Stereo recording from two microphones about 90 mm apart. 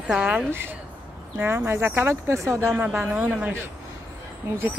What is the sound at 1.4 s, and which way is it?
Speech, 20° right (ahead or behind).